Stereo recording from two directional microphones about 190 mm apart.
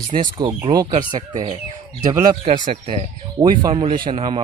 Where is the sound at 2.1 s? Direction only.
20° right (ahead or behind).